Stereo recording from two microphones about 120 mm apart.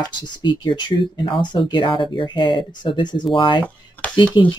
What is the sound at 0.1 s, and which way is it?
Speech, 40° left (ahead or behind).